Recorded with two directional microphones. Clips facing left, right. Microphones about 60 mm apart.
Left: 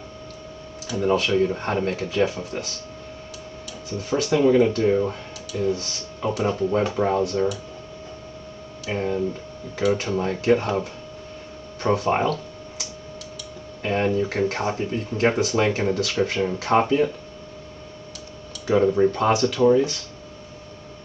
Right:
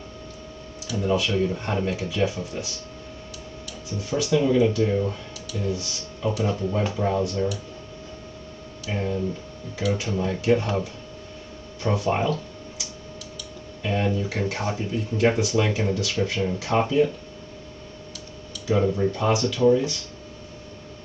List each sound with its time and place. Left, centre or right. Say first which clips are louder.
0.8 s speech: left 3 dB; left
4.1 s speech: left 3 dB; left
8.8 s speech: left 3 dB; left
13.8 s speech: left 3 dB; left
18.7 s speech: left 4 dB; left